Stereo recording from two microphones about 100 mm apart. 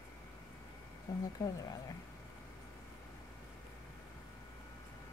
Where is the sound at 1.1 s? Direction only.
35° left (ahead or behind).